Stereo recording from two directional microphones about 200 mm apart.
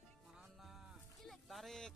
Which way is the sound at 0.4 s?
Centre (ahead or behind).